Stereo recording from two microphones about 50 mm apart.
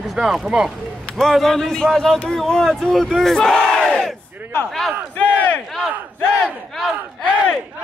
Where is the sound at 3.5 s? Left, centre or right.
Centre.